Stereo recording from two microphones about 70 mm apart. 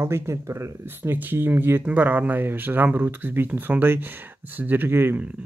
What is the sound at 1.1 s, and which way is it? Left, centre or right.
Speech, right.